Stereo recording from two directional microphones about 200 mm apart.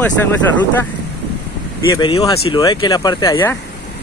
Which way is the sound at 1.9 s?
20° left (ahead or behind).